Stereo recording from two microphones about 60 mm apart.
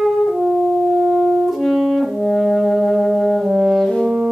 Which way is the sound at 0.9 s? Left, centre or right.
Right.